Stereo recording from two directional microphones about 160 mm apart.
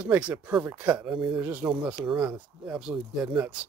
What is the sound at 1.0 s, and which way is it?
Speech, 30° right (ahead or behind).